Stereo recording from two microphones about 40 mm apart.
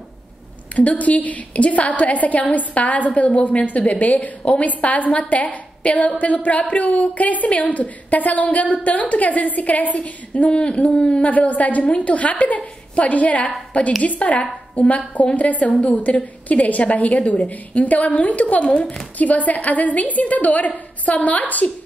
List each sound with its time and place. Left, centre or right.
0.7 s a woman's voice: left
11.2 s a woman's voice: left
17.5 s a woman's voice: left
19.1 s a woman's voice: left